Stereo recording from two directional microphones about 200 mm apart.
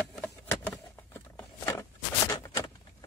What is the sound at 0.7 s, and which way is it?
Patter, 10° left (ahead or behind).